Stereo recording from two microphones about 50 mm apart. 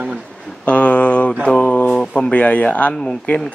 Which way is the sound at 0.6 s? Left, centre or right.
Left.